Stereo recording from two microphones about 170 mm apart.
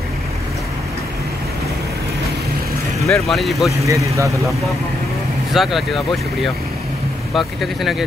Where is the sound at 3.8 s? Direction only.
20° right (ahead or behind).